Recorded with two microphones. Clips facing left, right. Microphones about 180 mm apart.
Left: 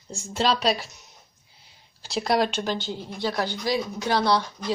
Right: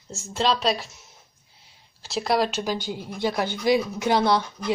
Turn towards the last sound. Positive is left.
turn(degrees=-20)  # may be behind; listen again after turning